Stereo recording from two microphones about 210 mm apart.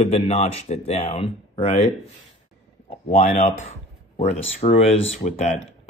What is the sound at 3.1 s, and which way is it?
Speech, 40° left (ahead or behind).